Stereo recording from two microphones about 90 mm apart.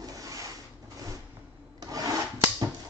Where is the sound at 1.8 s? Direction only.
45° right (ahead or behind).